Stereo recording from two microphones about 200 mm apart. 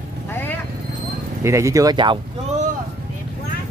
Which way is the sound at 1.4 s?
15° right (ahead or behind).